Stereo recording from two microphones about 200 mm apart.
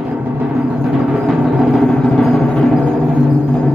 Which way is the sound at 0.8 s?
5° right (ahead or behind).